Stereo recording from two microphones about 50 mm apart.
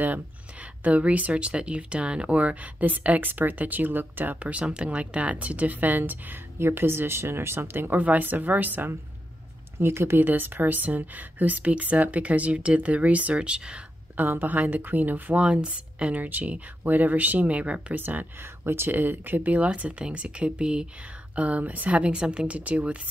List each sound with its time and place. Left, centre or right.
0.8 s speech: right
6.6 s a woman's voice: right
8.0 s speech: right
9.8 s speech: right; by 13.7 s centre
14.1 s speech: right
15.3 s speech: right
17.9 s speech: right
18.6 s speech: right
18.9 s speech: right; by 20.8 s centre
21.4 s speech: right